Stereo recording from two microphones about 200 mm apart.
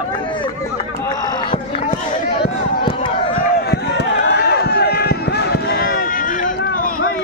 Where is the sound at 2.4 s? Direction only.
25° left (ahead or behind).